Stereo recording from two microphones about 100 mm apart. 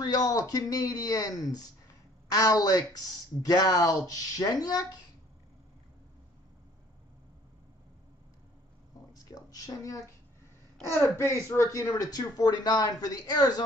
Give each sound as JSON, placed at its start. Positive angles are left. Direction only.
{"t": 0.0, "sound": "speech", "side_deg": 40}
{"t": 9.3, "sound": "speech", "side_deg": 35}
{"t": 11.1, "sound": "speech", "side_deg": 30}